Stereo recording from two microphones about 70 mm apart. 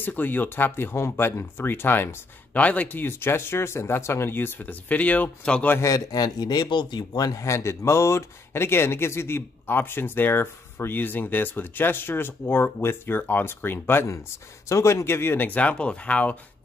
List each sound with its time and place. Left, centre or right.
0.0 s speech: left
2.5 s speech: left
5.8 s speech: left
7.3 s speech: left
14.7 s speech: left; by 16.3 s centre